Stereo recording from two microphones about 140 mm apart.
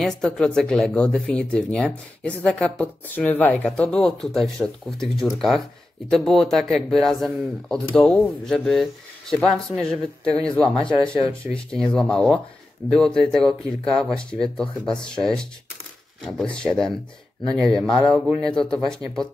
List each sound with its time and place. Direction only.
0.0 s speech: 5° left (ahead or behind)
10.7 s speech: 35° left (ahead or behind)
11.5 s speech: 5° left (ahead or behind)